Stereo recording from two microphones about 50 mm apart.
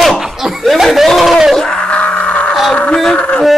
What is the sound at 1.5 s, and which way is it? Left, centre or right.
Wail, centre.